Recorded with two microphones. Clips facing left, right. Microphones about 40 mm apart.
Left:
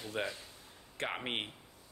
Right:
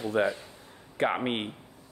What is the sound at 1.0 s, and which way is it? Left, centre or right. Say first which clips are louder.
Speech: right 10 dB; centre.